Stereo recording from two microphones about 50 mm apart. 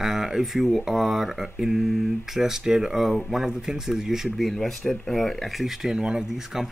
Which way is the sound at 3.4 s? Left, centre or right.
Centre.